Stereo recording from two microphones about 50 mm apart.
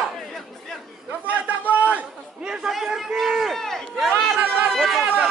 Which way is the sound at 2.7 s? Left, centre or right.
Centre.